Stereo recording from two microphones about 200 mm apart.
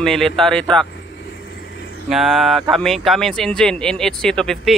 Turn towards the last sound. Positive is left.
turn(degrees=5)  # may be behind; listen again after turning